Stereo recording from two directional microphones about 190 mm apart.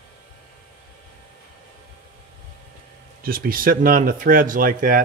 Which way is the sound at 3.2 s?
50° right (ahead or behind).